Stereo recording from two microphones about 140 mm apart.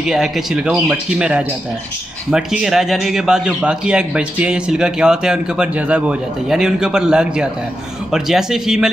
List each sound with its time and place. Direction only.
0.0 s a man's voice: 5° right (ahead or behind)